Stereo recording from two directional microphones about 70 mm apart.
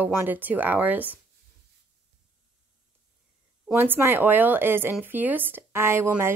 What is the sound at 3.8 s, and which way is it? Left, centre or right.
A woman's voice, right.